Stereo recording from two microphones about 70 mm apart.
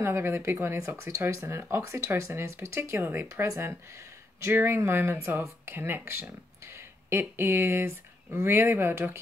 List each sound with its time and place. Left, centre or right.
0.0 s speech: right